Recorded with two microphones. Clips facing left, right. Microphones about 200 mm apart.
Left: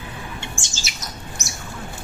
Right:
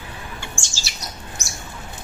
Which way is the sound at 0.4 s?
20° left (ahead or behind).